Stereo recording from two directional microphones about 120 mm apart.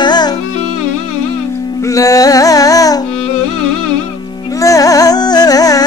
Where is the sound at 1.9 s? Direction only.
30° left (ahead or behind).